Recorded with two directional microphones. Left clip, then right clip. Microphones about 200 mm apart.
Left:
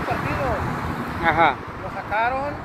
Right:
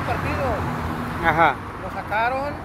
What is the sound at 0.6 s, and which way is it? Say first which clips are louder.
Vehicle: even; 50° right (ahead or behind).